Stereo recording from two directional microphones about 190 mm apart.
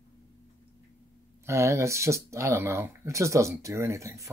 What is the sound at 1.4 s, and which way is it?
Speech, 15° right (ahead or behind).